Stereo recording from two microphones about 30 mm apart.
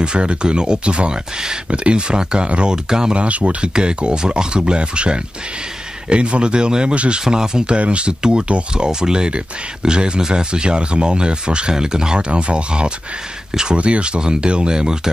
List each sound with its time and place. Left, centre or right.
0.0 s speech: right
2.7 s speech: right
3.2 s speech: right
3.6 s speech: right
7.6 s speech: right
8.2 s speech: right
12.3 s speech: right